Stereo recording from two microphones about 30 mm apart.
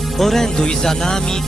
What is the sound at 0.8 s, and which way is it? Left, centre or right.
Music, centre.